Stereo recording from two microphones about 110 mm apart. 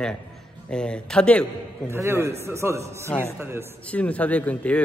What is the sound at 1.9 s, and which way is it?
A man's voice, 25° right (ahead or behind).